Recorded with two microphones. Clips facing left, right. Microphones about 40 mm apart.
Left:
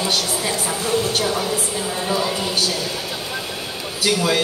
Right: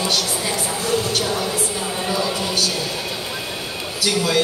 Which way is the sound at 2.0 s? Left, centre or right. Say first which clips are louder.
Left 1 dB; centre.